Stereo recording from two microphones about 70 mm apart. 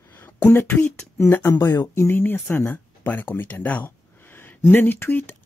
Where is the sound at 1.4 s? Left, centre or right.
Left.